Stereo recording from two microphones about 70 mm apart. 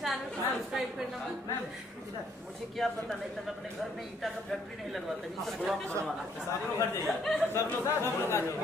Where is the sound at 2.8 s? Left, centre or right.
Centre.